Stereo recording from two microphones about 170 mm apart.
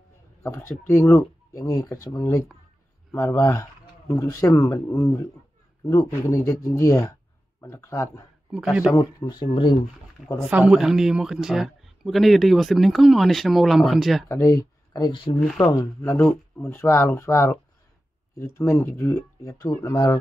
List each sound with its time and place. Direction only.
0.4 s speech: 15° left (ahead or behind)
8.5 s speech: 5° right (ahead or behind)
9.3 s speech: 25° left (ahead or behind)
10.5 s speech: 5° right (ahead or behind)
14.3 s speech: 20° left (ahead or behind)
16.2 s speech: 5° left (ahead or behind)